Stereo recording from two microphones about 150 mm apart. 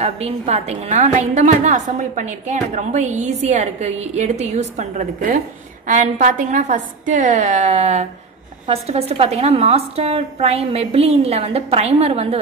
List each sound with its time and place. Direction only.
0.0 s a woman's voice: 45° right (ahead or behind)